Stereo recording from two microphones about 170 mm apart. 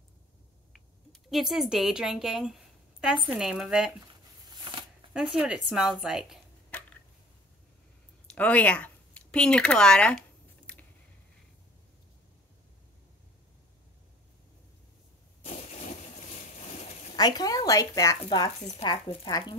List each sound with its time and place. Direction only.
0.7 s a sound: centre (ahead or behind)
3.3 s a woman's voice: centre (ahead or behind)
4.5 s shuffling cards: 25° right (ahead or behind)
5.1 s a woman's voice: 5° right (ahead or behind)
8.3 s speech: 10° left (ahead or behind)
10.7 s a sound: 5° left (ahead or behind)
17.1 s speech: 20° left (ahead or behind)